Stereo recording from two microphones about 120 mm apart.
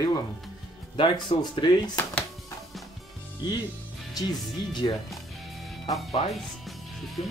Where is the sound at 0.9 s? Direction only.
45° left (ahead or behind).